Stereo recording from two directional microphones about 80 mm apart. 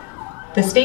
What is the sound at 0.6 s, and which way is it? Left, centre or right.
Speech, right.